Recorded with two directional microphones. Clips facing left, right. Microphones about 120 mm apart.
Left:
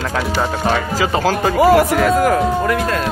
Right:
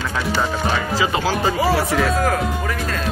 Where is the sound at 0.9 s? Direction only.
50° left (ahead or behind).